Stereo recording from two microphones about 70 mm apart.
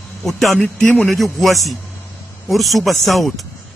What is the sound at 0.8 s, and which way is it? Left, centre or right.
Speech, left.